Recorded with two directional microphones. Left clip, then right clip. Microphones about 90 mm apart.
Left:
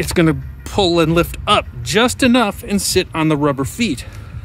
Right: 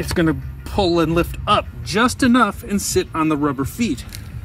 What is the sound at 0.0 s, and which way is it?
Speech, 40° left (ahead or behind).